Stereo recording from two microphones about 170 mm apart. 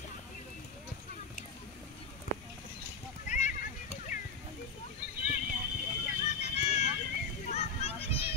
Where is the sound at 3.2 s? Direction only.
50° left (ahead or behind).